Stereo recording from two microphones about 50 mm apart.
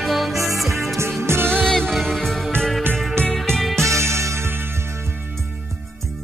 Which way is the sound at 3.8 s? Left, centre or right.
Right.